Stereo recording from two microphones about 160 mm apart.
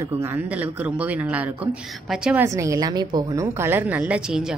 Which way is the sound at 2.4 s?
20° right (ahead or behind).